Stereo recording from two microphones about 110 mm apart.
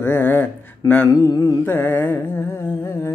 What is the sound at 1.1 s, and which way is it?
Mantra, 30° left (ahead or behind).